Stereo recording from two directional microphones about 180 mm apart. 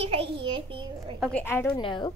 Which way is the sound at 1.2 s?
10° left (ahead or behind).